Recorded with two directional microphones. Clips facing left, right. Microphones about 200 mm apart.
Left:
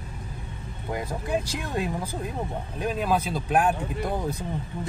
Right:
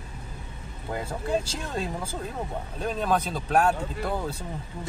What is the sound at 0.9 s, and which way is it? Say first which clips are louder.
Speech: even; 15° left (ahead or behind).